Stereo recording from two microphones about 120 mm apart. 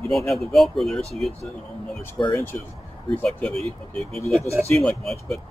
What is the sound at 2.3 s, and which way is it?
Speech, 20° left (ahead or behind).